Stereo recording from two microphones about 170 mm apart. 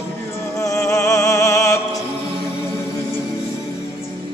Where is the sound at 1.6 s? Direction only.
20° left (ahead or behind).